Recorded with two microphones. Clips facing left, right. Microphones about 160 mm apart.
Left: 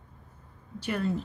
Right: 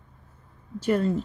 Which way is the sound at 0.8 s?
40° right (ahead or behind).